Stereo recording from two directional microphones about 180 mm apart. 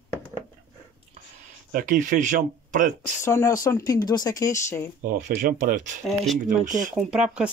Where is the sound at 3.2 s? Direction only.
15° left (ahead or behind).